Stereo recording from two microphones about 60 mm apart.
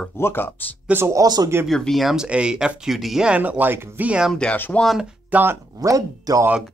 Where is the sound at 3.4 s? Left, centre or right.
Right.